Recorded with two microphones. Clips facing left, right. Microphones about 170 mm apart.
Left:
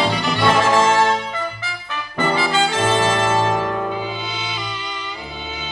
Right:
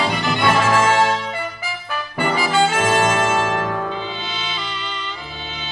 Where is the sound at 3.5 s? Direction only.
15° left (ahead or behind).